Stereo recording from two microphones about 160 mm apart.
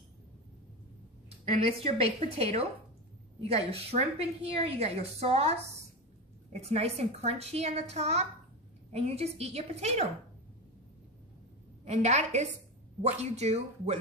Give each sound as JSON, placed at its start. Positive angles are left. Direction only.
{"t": 1.5, "sound": "a woman's voice", "side_deg": -40}
{"t": 11.8, "sound": "speech", "side_deg": -45}